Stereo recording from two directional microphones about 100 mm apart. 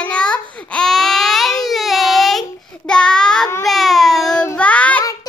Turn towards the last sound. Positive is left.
turn(degrees=35)  # may be behind; listen again after turning